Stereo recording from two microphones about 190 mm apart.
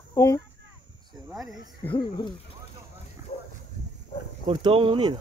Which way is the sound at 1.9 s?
25° left (ahead or behind).